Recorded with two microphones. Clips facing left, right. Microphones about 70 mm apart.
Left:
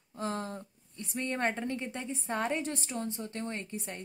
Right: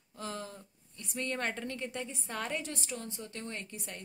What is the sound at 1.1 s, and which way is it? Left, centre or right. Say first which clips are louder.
A woman's voice: left 3 dB; left.